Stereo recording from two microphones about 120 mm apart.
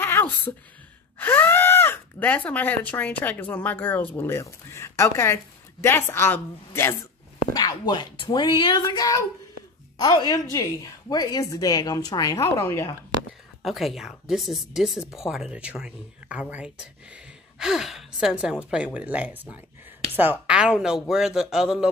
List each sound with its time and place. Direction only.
0.0 s a sound: 20° left (ahead or behind)
1.2 s speech: 15° left (ahead or behind)
7.5 s a woman's voice: 35° left (ahead or behind); by 12.9 s 20° left (ahead or behind)
13.6 s speech: centre (ahead or behind)